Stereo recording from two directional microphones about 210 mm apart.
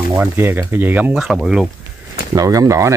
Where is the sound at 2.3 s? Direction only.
15° right (ahead or behind).